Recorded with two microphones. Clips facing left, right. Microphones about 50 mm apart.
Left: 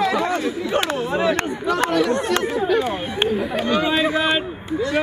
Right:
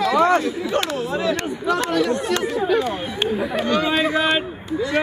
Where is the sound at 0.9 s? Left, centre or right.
Left.